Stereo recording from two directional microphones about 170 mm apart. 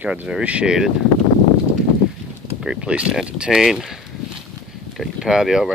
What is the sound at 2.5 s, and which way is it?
Speech, 5° right (ahead or behind).